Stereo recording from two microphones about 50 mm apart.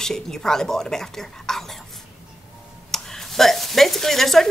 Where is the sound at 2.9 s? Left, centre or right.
Centre.